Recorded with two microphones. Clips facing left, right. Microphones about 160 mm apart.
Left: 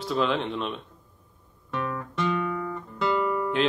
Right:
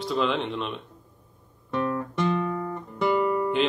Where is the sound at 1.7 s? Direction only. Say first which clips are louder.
Right 4 dB; 20° right (ahead or behind).